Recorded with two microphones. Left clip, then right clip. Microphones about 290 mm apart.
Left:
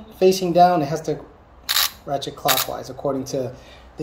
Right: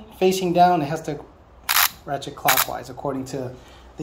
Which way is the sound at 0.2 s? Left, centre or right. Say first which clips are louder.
Left 2 dB; right.